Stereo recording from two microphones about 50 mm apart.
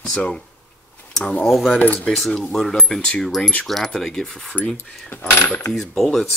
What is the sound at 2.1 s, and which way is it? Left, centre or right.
Speech, centre.